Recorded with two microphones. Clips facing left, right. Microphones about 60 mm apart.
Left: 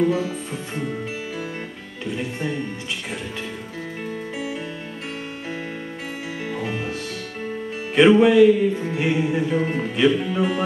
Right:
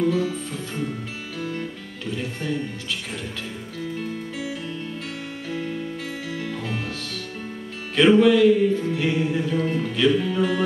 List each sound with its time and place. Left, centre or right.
0.0 s music: left
6.5 s music: left
8.2 s music: left